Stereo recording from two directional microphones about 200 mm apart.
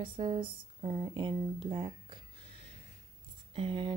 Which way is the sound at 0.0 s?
25° right (ahead or behind).